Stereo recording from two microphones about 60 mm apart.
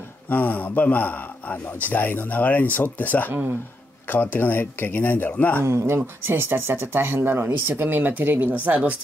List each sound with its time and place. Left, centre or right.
0.3 s speech: left
3.3 s speech: right
4.1 s speech: left
5.6 s speech: right